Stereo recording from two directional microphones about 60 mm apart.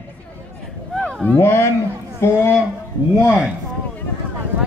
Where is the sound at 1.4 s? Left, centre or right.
Left.